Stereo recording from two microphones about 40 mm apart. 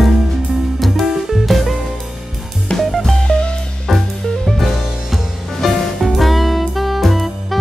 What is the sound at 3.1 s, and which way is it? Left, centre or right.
Music, centre.